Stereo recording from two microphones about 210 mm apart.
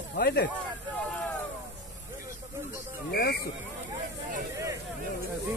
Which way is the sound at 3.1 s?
50° left (ahead or behind).